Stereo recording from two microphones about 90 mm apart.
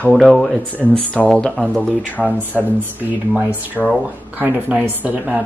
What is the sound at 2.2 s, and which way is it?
Speech, 20° right (ahead or behind).